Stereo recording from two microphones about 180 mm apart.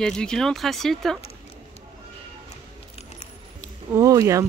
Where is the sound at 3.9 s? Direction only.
15° right (ahead or behind).